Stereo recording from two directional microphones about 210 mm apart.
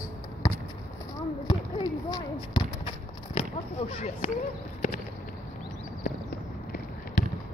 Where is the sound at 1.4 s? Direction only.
20° left (ahead or behind).